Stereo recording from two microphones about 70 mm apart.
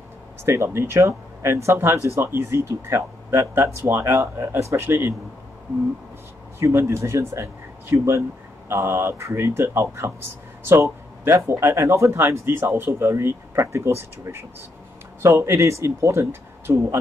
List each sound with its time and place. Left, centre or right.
0.5 s speech: right
6.6 s speech: right